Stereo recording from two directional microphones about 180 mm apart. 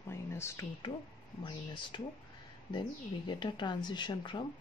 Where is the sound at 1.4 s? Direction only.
25° left (ahead or behind).